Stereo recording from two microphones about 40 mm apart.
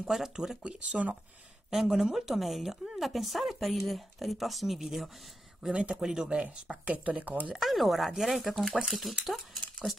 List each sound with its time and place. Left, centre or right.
0.0 s speech: centre
0.7 s speech: right
1.7 s speech: centre
5.6 s speech: right
6.9 s speech: right
7.6 s speech: centre
9.2 s stir: centre